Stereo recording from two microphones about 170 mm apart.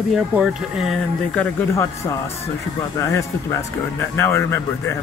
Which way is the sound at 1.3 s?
15° left (ahead or behind).